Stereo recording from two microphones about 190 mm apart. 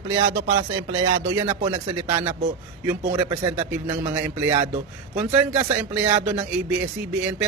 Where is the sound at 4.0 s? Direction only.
10° right (ahead or behind).